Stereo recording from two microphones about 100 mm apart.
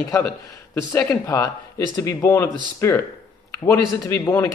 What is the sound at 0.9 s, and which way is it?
A man's voice, 30° left (ahead or behind).